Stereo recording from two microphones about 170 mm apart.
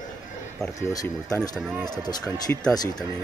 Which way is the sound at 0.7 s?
20° left (ahead or behind).